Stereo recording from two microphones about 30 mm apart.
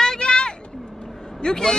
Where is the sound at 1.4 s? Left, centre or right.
Left.